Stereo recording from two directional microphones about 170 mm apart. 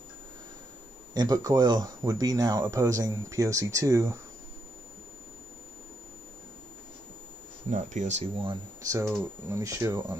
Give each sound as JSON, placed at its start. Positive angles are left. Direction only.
{"t": 1.1, "sound": "speech", "side_deg": -25}
{"t": 7.7, "sound": "speech", "side_deg": -45}
{"t": 8.9, "sound": "speech", "side_deg": -20}